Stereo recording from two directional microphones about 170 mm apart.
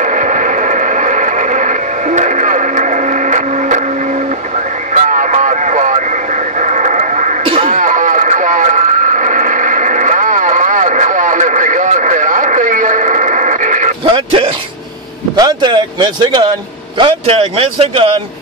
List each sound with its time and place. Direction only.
0.0 s a sound: 50° right (ahead or behind)
4.9 s a sound: 50° right (ahead or behind)
6.6 s music: 45° right (ahead or behind)
7.6 s radio: 50° right (ahead or behind)
14.1 s bow-wow: 30° right (ahead or behind)
15.3 s speech: 25° right (ahead or behind)